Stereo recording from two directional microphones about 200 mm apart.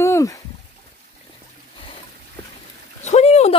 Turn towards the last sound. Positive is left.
turn(degrees=35)  # may be behind; listen again after turning